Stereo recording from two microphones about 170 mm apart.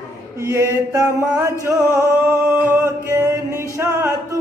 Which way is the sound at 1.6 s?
20° right (ahead or behind).